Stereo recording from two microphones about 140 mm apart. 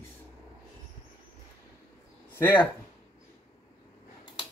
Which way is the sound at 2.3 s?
15° left (ahead or behind).